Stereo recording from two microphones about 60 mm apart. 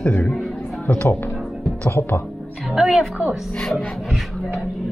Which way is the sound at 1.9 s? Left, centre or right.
Left.